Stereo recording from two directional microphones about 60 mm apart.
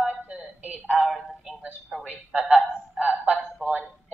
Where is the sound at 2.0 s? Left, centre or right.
Centre.